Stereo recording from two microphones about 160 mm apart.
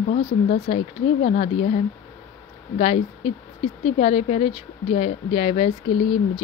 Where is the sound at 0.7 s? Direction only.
45° left (ahead or behind).